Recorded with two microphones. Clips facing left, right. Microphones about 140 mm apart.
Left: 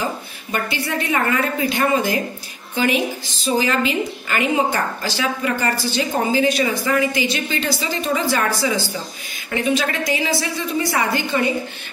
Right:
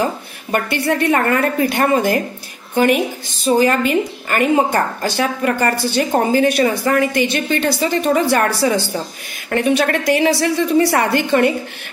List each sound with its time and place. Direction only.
0.5 s a woman's voice: 60° right (ahead or behind)